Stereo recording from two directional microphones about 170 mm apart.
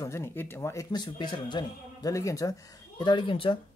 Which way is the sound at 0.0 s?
15° left (ahead or behind).